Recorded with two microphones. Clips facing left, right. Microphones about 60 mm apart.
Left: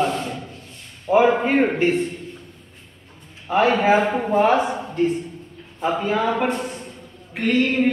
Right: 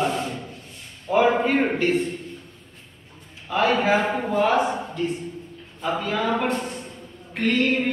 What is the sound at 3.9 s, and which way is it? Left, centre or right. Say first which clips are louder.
Speech: left 3 dB; centre.